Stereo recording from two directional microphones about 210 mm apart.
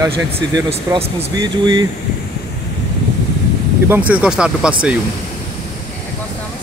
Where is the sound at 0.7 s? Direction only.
25° right (ahead or behind).